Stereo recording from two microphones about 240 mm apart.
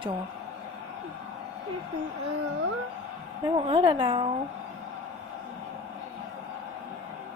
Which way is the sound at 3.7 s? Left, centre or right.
Right.